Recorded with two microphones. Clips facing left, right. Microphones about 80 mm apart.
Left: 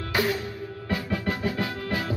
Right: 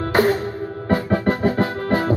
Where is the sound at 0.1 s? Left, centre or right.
Right.